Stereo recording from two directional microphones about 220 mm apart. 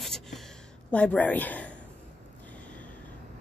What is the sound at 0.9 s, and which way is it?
Speech, 5° left (ahead or behind).